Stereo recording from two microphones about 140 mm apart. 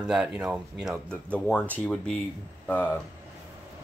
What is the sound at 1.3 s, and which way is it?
Speech, 10° left (ahead or behind).